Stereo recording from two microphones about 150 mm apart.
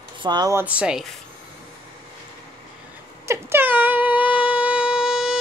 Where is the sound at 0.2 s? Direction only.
30° right (ahead or behind).